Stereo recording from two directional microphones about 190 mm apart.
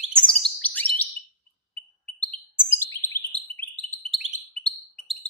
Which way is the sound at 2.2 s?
30° left (ahead or behind).